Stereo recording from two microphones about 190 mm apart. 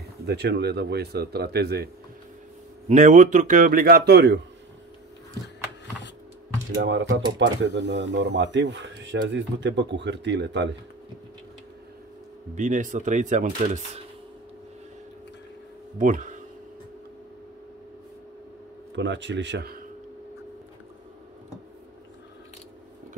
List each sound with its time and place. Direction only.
0.3 s speech: 60° right (ahead or behind)
2.9 s a man's voice: 40° right (ahead or behind); by 4.4 s 60° right (ahead or behind)
6.8 s speech: 70° right (ahead or behind)
12.5 s speech: 40° right (ahead or behind)
16.0 s a man's voice: 40° right (ahead or behind)
18.9 s speech: 70° right (ahead or behind)